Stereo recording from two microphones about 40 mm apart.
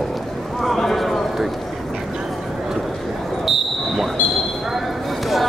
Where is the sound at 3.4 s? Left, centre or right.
Centre.